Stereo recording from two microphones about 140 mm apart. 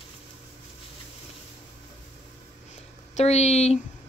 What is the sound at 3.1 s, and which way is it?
Speech, 50° left (ahead or behind).